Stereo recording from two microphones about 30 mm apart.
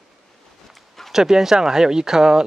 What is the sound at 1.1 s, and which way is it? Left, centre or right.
Speech, centre.